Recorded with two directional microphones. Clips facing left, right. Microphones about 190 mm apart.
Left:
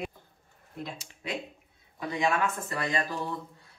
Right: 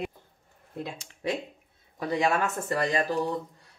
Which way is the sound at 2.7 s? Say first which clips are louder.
Right 8 dB; 40° right (ahead or behind).